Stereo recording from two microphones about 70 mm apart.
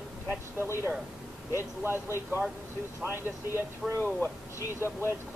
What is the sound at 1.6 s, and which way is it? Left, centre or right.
Speech, right.